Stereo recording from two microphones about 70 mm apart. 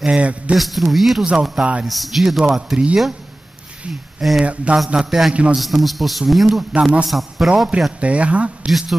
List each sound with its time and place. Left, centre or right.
0.0 s a man's voice: centre
0.6 s a man's voice: centre
4.2 s a man's voice: centre
5.3 s a man's voice: centre
5.6 s a man's voice: centre
6.7 s a man's voice: centre
7.1 s a man's voice: centre
8.0 s a man's voice: centre
8.6 s speech: centre